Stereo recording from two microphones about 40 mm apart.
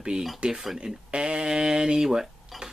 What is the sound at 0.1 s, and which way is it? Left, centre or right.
Speech, right.